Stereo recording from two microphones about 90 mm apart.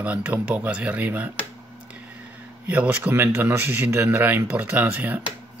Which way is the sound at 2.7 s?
15° right (ahead or behind).